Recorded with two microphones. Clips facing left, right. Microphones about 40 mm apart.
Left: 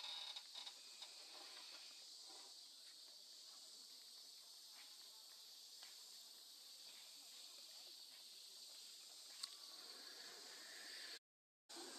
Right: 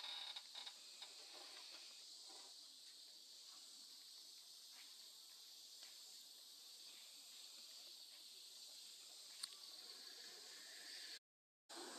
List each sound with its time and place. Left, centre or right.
0.0 s printer: centre
10.0 s insect: centre
11.7 s a sound: centre